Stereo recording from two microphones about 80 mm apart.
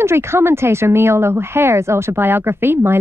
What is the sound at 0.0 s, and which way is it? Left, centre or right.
Speech, right.